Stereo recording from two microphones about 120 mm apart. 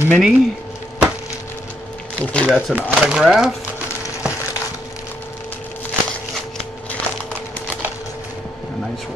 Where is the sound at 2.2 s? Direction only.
10° left (ahead or behind).